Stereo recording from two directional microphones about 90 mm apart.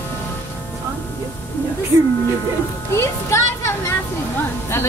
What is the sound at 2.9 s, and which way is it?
A woman's voice, 30° left (ahead or behind).